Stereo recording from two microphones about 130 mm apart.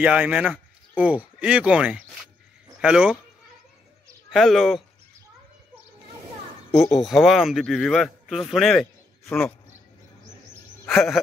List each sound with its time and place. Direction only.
0.0 s speech: 10° right (ahead or behind)
4.3 s speech: centre (ahead or behind)
6.8 s speech: centre (ahead or behind)
9.2 s speech: 20° left (ahead or behind)
10.9 s speech: centre (ahead or behind)